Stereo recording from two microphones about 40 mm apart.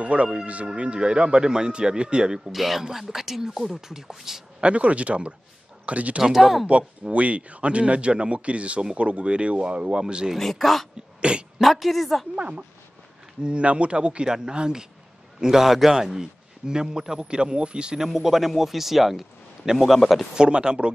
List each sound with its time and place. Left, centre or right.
0.0 s speech: right
2.5 s a man's voice: centre
4.6 s speech: right
6.3 s a man's voice: centre
7.1 s speech: right
10.3 s speech: centre
11.1 s speech: right
11.5 s speech: centre
12.4 s a man's voice: right
18.0 s a man's voice: centre
19.9 s speech: centre
20.3 s speech: right